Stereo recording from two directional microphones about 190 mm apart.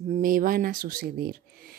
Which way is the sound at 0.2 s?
45° right (ahead or behind).